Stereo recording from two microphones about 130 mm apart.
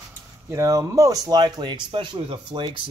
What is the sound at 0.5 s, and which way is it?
Speech, 25° right (ahead or behind).